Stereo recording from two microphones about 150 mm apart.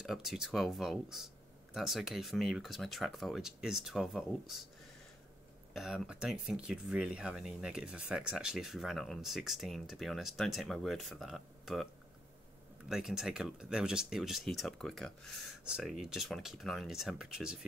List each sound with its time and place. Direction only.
0.0 s speech: centre (ahead or behind)
5.7 s speech: centre (ahead or behind)